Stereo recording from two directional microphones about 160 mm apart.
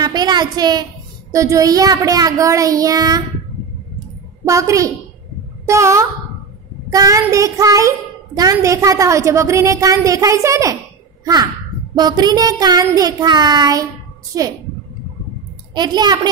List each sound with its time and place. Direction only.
0.0 s a woman's voice: 25° right (ahead or behind)
4.5 s a woman's voice: 20° right (ahead or behind)
11.9 s a woman's voice: 25° right (ahead or behind)
15.7 s a woman's voice: 25° right (ahead or behind)